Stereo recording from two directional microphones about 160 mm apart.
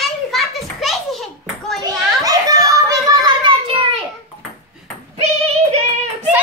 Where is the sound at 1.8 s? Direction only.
25° right (ahead or behind).